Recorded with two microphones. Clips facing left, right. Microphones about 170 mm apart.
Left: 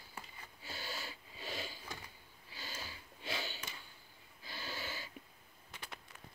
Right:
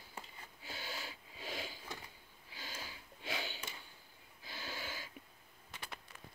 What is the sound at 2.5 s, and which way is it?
Sniff, 15° right (ahead or behind).